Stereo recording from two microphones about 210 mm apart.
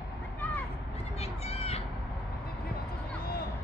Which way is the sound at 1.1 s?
30° left (ahead or behind).